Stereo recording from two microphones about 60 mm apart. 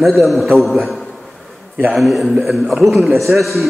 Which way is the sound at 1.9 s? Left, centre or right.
Centre.